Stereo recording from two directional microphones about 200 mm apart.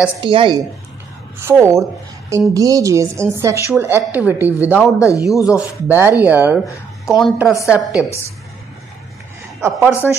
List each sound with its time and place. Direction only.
0.2 s a woman's voice: 25° right (ahead or behind)
1.4 s a woman's voice: 15° right (ahead or behind)
4.9 s a man's voice: 15° left (ahead or behind)
5.9 s a woman's voice: 10° right (ahead or behind)
9.6 s a woman's voice: 10° right (ahead or behind)